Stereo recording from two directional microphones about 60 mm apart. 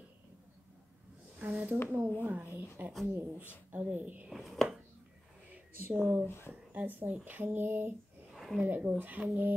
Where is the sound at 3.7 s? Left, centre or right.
Right.